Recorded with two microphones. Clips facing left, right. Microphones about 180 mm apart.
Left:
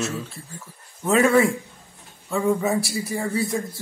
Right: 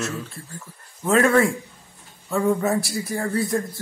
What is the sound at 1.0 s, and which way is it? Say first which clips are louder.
A man's voice: even; 10° left (ahead or behind).